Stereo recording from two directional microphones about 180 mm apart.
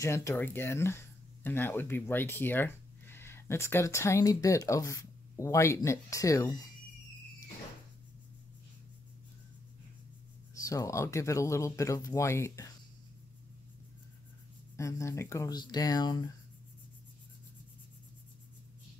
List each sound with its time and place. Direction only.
0.0 s speech: 15° left (ahead or behind)
10.6 s speech: 20° left (ahead or behind)
14.8 s speech: 15° left (ahead or behind)